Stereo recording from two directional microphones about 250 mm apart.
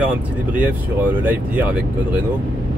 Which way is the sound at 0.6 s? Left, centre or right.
Centre.